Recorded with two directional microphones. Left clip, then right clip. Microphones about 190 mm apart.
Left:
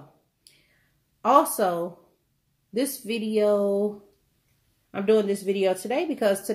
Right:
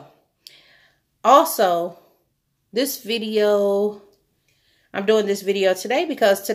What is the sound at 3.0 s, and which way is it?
Speech, 35° right (ahead or behind).